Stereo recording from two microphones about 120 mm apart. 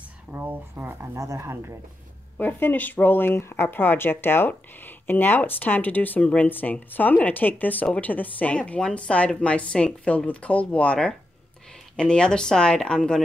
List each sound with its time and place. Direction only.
0.3 s speech: 15° right (ahead or behind)
2.3 s speech: 15° left (ahead or behind)